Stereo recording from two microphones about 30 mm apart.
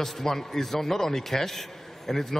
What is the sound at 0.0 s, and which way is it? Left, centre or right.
A man's voice, centre.